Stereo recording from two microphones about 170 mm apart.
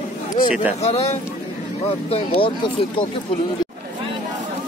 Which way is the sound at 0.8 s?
40° left (ahead or behind).